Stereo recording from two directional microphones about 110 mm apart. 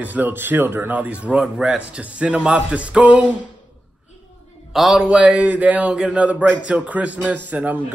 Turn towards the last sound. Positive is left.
turn(degrees=-15)  # may be behind; listen again after turning